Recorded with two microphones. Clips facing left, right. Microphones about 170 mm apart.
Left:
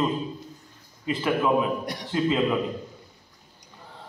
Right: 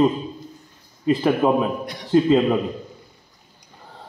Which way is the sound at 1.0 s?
40° right (ahead or behind).